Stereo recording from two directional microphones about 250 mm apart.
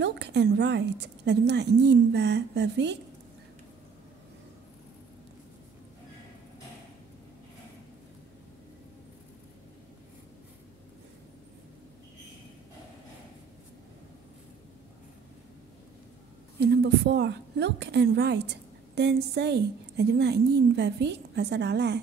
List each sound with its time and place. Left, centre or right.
0.0 s a woman's voice: right
16.5 s a woman's voice: right